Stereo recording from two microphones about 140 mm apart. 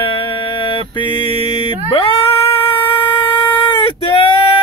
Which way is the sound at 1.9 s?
40° left (ahead or behind).